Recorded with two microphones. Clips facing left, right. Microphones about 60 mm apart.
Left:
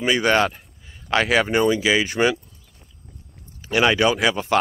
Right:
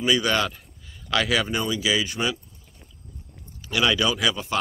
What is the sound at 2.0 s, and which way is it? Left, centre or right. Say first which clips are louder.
Speech: left 7 dB; left.